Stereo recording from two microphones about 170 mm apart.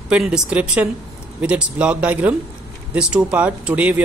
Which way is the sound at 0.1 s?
5° right (ahead or behind).